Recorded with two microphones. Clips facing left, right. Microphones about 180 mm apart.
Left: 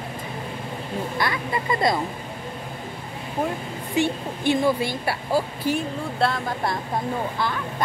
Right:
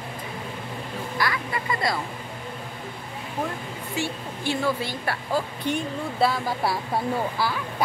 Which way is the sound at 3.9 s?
20° left (ahead or behind).